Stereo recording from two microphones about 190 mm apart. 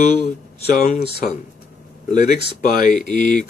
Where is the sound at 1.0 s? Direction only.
55° left (ahead or behind).